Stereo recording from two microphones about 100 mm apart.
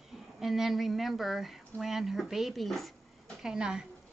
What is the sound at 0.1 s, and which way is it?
A woman's voice, centre (ahead or behind).